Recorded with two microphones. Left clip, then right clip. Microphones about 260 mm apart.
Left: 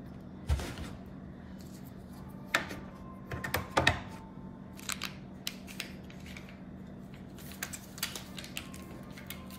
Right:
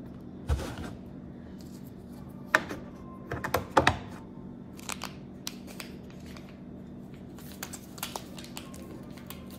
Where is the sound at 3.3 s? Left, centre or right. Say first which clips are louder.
Right 5 dB; right.